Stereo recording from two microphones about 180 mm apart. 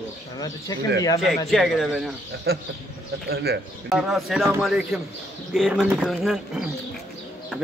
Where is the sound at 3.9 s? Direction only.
Centre (ahead or behind).